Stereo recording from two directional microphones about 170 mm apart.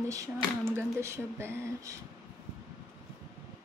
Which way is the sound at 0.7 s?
15° right (ahead or behind).